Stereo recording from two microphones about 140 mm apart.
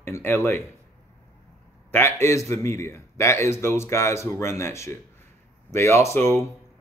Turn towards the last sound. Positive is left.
turn(degrees=15)  # may be behind; listen again after turning